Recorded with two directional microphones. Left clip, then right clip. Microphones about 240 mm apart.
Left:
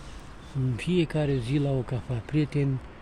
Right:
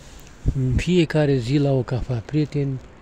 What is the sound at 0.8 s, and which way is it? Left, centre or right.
Speech, right.